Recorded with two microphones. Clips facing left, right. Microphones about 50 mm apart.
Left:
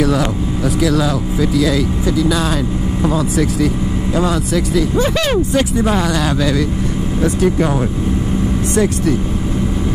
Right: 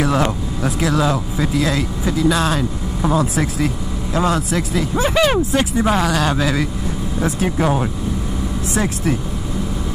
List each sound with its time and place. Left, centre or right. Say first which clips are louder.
0.0 s speech: left 2 dB; right; by 3.2 s centre
3.2 s speech: left 3 dB; right
4.1 s speech: even; centre
4.5 s speech: left 4 dB; right
5.0 s speech: even; centre
6.3 s speech: left 3 dB; right